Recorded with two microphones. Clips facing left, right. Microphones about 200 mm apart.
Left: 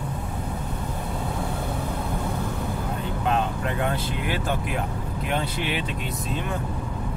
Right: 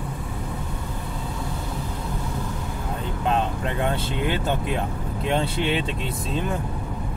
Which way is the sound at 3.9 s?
25° right (ahead or behind).